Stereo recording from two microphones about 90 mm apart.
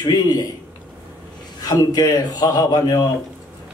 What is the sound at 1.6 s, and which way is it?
A man's voice, 45° left (ahead or behind).